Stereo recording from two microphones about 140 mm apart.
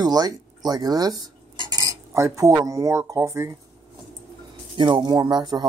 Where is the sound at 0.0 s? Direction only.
30° right (ahead or behind).